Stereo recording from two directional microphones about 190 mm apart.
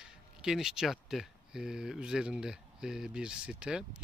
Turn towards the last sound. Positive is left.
turn(degrees=-5)  # may be behind; listen again after turning